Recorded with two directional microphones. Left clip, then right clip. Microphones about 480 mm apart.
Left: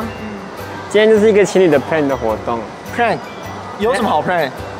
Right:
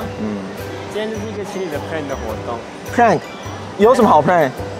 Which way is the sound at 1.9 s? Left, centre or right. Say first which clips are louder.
Left 8 dB; left.